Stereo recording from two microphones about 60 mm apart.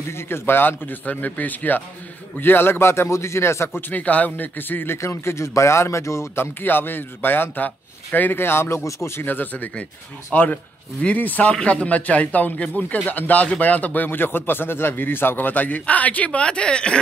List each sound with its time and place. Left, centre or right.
0.1 s a man's voice: left
3.9 s speech: left
4.9 s a man's voice: left
6.3 s a man's voice: left
9.2 s speech: left; by 17.0 s centre